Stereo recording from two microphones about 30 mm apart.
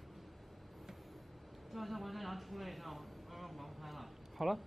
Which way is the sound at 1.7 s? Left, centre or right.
Centre.